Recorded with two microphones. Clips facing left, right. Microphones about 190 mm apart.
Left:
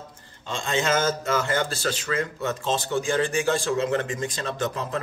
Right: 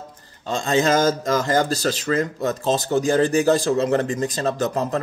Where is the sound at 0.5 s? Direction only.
40° right (ahead or behind).